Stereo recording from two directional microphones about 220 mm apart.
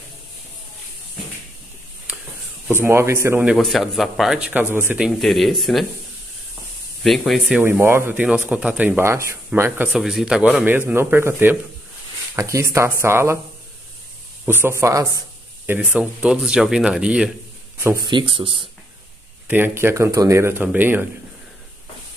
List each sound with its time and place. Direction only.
2.8 s speech: 10° right (ahead or behind)
3.5 s speech: centre (ahead or behind)
7.0 s speech: centre (ahead or behind)
14.4 s speech: 10° right (ahead or behind)
17.8 s speech: 20° right (ahead or behind)
19.4 s speech: 10° right (ahead or behind)